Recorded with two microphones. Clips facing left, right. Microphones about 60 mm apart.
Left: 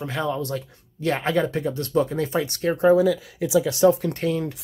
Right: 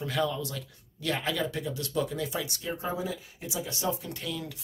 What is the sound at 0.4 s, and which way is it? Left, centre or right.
Speech, left.